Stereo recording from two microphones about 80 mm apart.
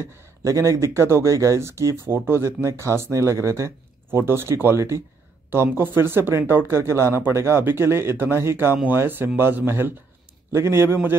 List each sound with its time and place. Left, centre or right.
0.0 s speech: right